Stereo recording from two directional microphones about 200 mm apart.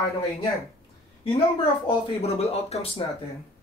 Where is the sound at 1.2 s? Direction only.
25° left (ahead or behind).